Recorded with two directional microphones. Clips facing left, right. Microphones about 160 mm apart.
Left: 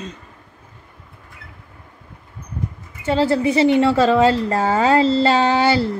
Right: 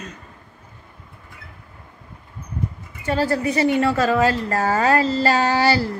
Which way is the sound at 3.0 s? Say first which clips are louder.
Left 4 dB; 25° left (ahead or behind).